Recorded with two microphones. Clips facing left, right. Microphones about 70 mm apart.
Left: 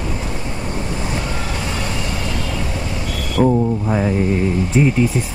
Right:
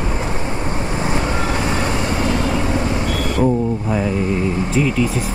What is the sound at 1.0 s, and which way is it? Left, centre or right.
Vehicle, right.